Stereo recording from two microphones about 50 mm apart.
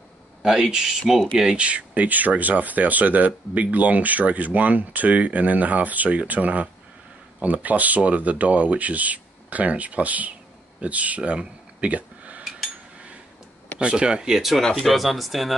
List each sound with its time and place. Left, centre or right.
0.4 s speech: centre
1.6 s speech: right
13.7 s speech: centre
14.6 s speech: centre
14.9 s speech: centre